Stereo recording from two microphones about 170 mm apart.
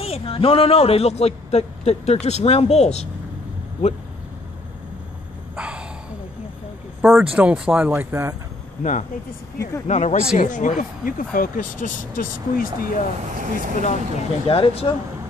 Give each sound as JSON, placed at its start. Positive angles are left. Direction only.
{"t": 0.0, "sound": "a man's voice", "side_deg": 35}
{"t": 5.6, "sound": "a sound", "side_deg": -5}
{"t": 7.0, "sound": "speech", "side_deg": -5}
{"t": 9.8, "sound": "speech", "side_deg": 45}
{"t": 13.3, "sound": "speech", "side_deg": -50}
{"t": 13.8, "sound": "a man's voice", "side_deg": 35}